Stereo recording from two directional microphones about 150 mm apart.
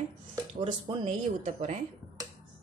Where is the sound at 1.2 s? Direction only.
55° right (ahead or behind).